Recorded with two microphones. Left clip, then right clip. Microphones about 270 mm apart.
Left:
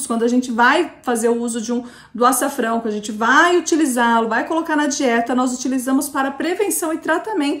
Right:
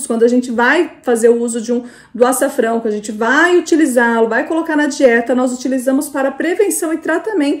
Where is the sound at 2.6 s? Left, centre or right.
Centre.